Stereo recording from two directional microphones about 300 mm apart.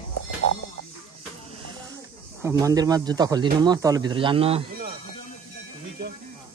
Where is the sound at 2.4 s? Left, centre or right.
Centre.